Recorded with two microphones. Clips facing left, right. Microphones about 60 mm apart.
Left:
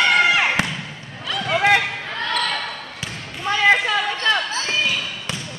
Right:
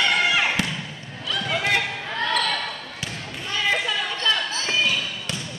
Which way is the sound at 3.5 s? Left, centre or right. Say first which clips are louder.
Left 7 dB; left.